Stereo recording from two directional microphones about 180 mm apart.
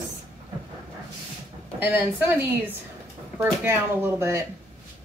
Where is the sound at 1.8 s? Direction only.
10° right (ahead or behind).